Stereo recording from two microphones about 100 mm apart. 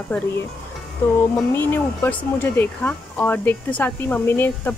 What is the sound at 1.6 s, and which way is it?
Speech, 20° left (ahead or behind).